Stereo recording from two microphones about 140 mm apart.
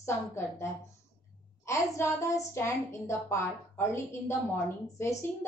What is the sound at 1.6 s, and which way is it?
A woman's voice, 20° left (ahead or behind).